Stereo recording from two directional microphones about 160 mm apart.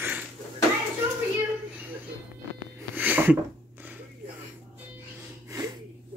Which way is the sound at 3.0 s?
10° right (ahead or behind).